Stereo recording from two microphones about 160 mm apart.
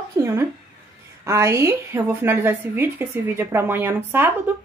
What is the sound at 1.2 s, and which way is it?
A woman's voice, 15° right (ahead or behind).